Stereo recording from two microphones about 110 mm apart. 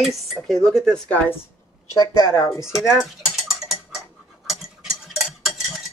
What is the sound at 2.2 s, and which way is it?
Speech, 35° left (ahead or behind).